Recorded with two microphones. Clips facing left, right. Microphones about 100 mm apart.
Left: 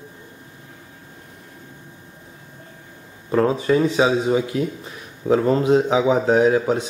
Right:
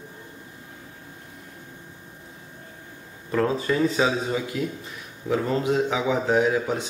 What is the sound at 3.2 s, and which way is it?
Speech, 25° left (ahead or behind).